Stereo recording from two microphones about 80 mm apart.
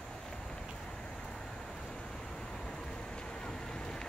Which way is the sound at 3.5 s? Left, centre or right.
Centre.